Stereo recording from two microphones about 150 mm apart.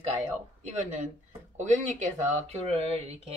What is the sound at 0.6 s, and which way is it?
Speech, 50° right (ahead or behind).